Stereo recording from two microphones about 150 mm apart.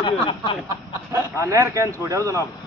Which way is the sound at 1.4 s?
20° right (ahead or behind).